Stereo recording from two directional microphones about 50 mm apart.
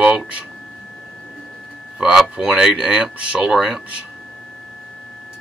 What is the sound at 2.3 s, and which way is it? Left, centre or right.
Speech, centre.